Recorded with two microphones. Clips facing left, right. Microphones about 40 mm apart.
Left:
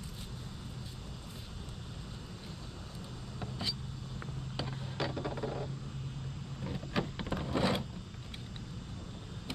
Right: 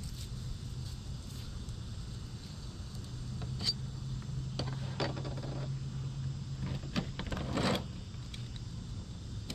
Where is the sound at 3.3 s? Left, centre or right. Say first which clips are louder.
Left 1 dB; left.